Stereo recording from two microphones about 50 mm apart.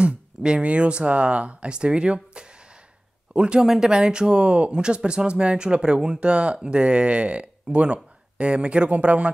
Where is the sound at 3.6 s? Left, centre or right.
Centre.